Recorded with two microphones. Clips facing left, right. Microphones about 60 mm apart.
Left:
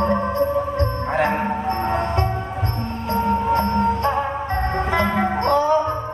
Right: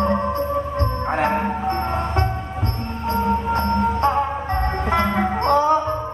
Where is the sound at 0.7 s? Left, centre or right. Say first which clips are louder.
Left 1 dB; right.